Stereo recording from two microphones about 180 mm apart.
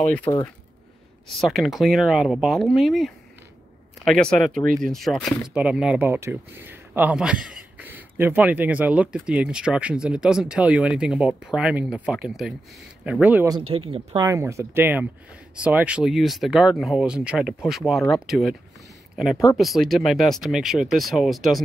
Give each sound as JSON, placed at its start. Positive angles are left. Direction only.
{"t": 0.3, "sound": "speech", "side_deg": 20}
{"t": 1.3, "sound": "speech", "side_deg": 0}
{"t": 13.5, "sound": "speech", "side_deg": -30}
{"t": 14.2, "sound": "speech", "side_deg": -15}